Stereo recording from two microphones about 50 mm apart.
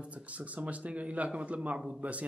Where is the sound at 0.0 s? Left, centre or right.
Right.